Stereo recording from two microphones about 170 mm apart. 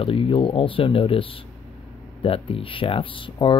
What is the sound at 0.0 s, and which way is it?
Speech, 30° left (ahead or behind).